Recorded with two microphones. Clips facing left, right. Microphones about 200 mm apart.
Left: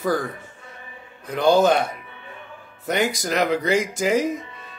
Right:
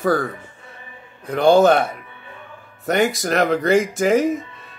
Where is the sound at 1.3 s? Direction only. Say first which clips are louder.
Right 4 dB; 60° right (ahead or behind).